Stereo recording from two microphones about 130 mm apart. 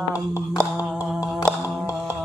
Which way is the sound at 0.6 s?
10° left (ahead or behind).